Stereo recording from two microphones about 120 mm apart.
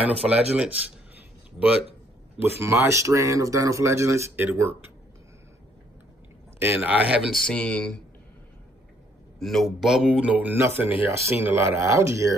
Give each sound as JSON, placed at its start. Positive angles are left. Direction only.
{"t": 0.0, "sound": "speech", "side_deg": -10}
{"t": 2.6, "sound": "speech", "side_deg": -25}
{"t": 6.6, "sound": "speech", "side_deg": -15}
{"t": 7.3, "sound": "speech", "side_deg": 5}
{"t": 9.4, "sound": "speech", "side_deg": 0}